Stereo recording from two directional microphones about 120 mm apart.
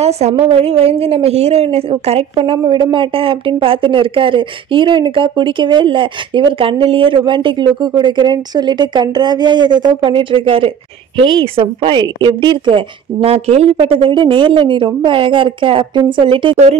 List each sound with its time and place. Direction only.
0.0 s a woman's voice: 65° right (ahead or behind); by 16.5 s 45° right (ahead or behind)